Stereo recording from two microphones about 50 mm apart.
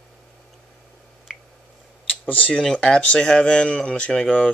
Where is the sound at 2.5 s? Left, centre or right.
Centre.